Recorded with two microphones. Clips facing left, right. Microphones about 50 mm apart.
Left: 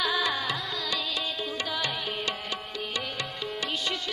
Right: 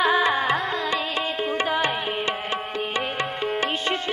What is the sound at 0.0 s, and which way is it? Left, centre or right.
Music, right.